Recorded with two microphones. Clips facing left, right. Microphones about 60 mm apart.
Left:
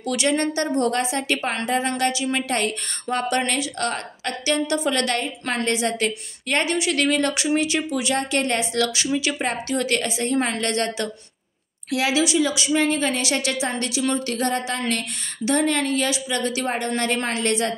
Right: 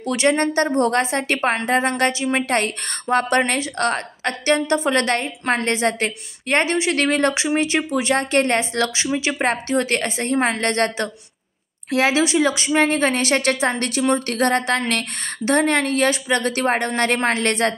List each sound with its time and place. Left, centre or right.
0.0 s a woman's voice: right